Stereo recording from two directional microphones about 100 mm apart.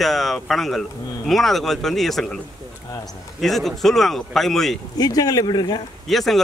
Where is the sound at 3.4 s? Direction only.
Centre (ahead or behind).